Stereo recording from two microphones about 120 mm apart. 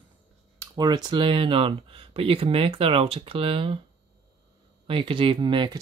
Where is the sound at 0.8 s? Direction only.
35° right (ahead or behind).